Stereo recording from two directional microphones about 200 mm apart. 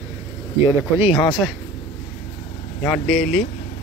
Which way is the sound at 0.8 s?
10° right (ahead or behind).